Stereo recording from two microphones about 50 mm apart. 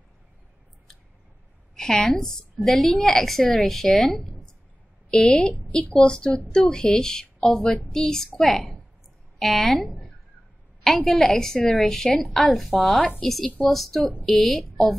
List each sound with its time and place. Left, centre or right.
1.8 s a woman's voice: centre